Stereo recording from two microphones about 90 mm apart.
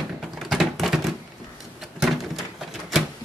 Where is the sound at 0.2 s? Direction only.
Centre (ahead or behind).